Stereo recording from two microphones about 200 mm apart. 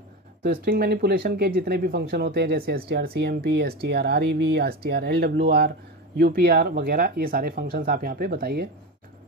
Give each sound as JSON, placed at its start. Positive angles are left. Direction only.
{"t": 0.4, "sound": "speech", "side_deg": -50}